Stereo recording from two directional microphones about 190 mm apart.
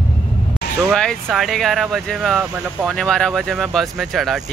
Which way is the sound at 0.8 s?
5° left (ahead or behind).